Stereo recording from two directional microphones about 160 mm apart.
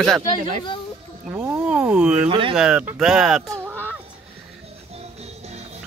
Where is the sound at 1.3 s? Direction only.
10° right (ahead or behind).